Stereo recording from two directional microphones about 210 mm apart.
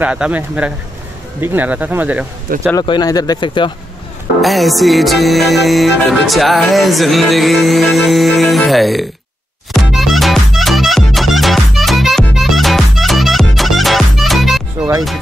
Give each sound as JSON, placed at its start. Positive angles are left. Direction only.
{"t": 0.0, "sound": "speech", "side_deg": -5}
{"t": 2.7, "sound": "speech", "side_deg": 20}
{"t": 4.4, "sound": "music", "side_deg": 0}